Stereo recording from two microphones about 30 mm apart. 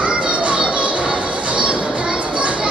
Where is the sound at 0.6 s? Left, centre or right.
Right.